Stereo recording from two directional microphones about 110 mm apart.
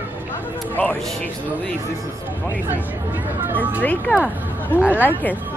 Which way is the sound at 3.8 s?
15° left (ahead or behind).